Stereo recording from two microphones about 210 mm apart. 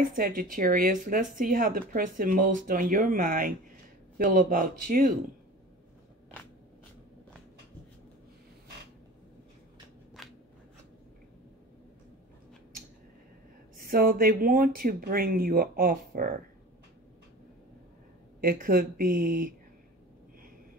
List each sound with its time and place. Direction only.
0.0 s speech: 40° right (ahead or behind)
13.7 s speech: 45° right (ahead or behind)
18.4 s speech: 45° right (ahead or behind)